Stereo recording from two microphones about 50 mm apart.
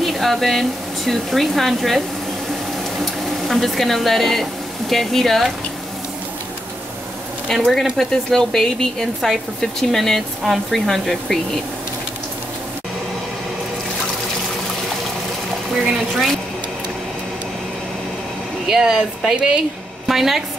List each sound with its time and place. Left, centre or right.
0.0 s speech: centre
7.4 s speech: centre
15.7 s speech: centre
18.7 s speech: centre
20.1 s a woman's voice: centre